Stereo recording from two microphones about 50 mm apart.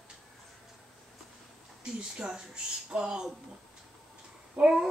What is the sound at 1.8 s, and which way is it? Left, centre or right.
A child's voice, centre.